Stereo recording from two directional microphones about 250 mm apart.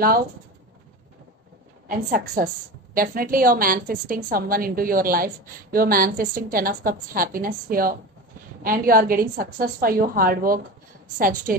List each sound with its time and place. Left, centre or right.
1.9 s a woman's voice: right